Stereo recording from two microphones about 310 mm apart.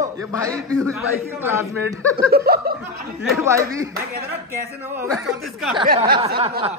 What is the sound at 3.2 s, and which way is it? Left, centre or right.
Speech, centre.